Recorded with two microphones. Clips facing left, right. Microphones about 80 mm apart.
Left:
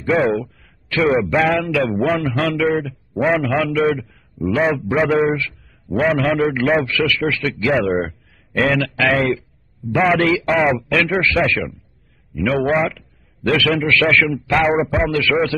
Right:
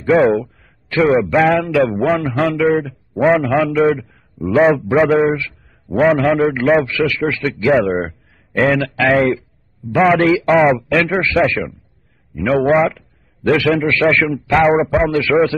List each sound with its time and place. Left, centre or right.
0.0 s a man's voice: centre
5.2 s a sound: centre
5.9 s a man's voice: centre
7.8 s a man's voice: centre
8.5 s a man's voice: centre